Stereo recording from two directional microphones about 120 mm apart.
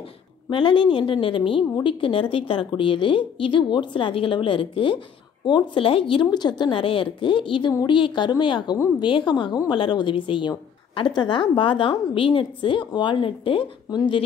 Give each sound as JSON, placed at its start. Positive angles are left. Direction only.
{"t": 0.5, "sound": "a woman's voice", "side_deg": 45}